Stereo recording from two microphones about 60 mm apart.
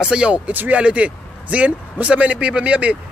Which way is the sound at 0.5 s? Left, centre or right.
Right.